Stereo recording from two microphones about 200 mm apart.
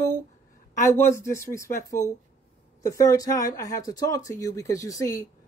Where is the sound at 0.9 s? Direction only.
15° left (ahead or behind).